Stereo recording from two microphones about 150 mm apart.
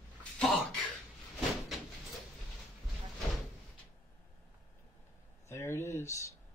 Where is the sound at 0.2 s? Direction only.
5° left (ahead or behind).